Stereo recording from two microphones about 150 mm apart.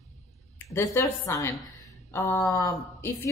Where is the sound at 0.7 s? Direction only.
15° left (ahead or behind).